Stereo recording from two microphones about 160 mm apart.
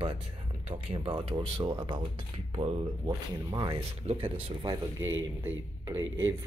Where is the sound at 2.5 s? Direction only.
35° right (ahead or behind).